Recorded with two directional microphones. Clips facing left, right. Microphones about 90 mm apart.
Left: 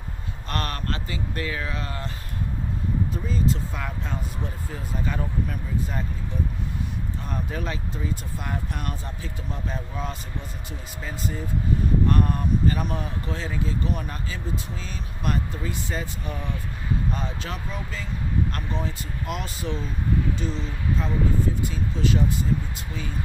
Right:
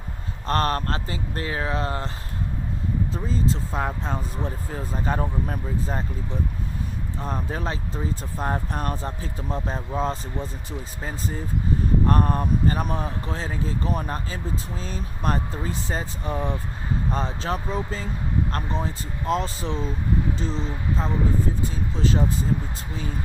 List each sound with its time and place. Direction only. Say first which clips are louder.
0.5 s speech: right 7 dB; 35° right (ahead or behind)
3.1 s speech: right 1 dB; 30° right (ahead or behind)
7.2 s speech: right 3 dB; 35° right (ahead or behind)